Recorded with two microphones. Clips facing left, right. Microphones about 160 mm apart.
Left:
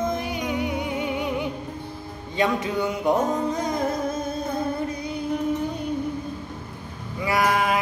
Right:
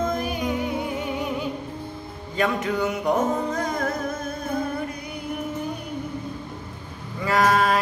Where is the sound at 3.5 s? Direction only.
20° left (ahead or behind).